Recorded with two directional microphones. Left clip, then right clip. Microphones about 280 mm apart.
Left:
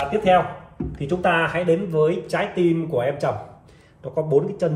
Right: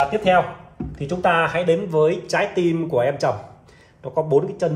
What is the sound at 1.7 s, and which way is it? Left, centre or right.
A man's voice, centre.